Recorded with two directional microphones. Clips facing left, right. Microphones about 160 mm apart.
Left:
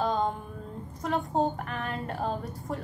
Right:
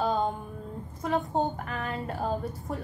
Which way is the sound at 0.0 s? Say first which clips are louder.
Even; 5° right (ahead or behind).